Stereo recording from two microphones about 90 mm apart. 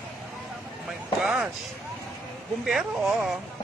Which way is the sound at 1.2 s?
10° right (ahead or behind).